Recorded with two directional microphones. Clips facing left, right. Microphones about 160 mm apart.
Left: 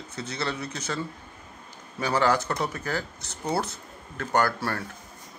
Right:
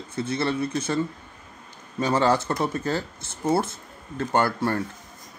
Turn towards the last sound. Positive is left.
turn(degrees=-20)  # may be behind; listen again after turning